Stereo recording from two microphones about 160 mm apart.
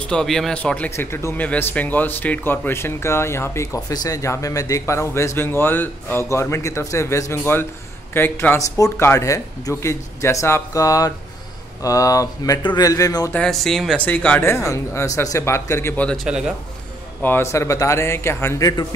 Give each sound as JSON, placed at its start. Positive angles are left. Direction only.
{"t": 0.0, "sound": "speech", "side_deg": 5}
{"t": 13.3, "sound": "speech", "side_deg": 5}
{"t": 16.3, "sound": "a man's voice", "side_deg": -5}
{"t": 17.2, "sound": "speech", "side_deg": 15}